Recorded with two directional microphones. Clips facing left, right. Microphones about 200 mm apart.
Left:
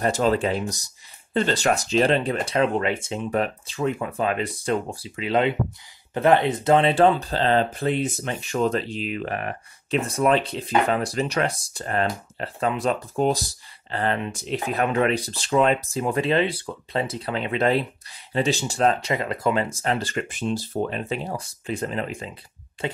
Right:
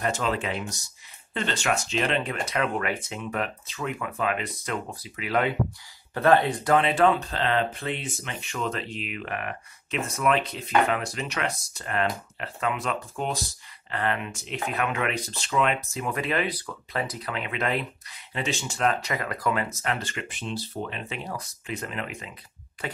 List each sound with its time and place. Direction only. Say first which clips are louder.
0.0 s speech: left 6 dB; 35° left (ahead or behind)
21.2 s speech: left 4 dB; 30° left (ahead or behind)